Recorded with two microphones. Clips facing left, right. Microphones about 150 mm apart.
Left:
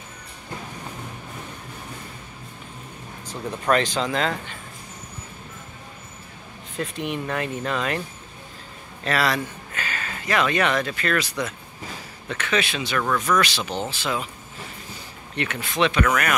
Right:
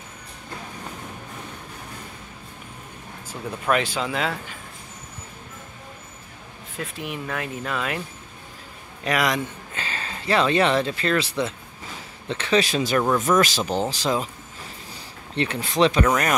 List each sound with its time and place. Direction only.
3.3 s speech: 5° right (ahead or behind)
6.8 s speech: centre (ahead or behind)
9.0 s speech: 15° right (ahead or behind)
9.8 s speech: 30° right (ahead or behind)
13.0 s speech: 25° right (ahead or behind)
13.4 s speech: 40° right (ahead or behind)
15.3 s speech: 30° right (ahead or behind)